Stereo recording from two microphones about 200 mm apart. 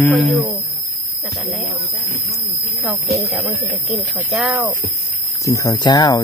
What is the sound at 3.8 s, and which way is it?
Speech, 5° right (ahead or behind).